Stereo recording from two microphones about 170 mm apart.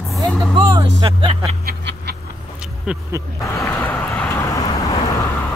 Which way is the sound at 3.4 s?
15° left (ahead or behind).